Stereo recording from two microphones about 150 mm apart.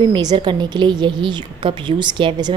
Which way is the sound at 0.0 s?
30° right (ahead or behind).